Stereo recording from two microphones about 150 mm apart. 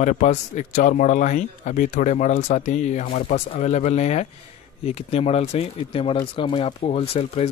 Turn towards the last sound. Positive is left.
turn(degrees=40)  # may be behind; listen again after turning